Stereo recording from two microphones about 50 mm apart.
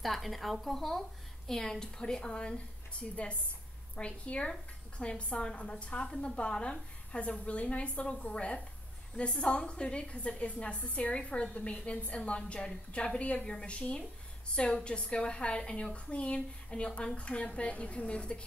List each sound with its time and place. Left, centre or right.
0.0 s a woman's voice: centre; by 18.4 s left